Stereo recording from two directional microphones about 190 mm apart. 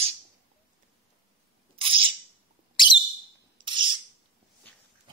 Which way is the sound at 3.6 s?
25° right (ahead or behind).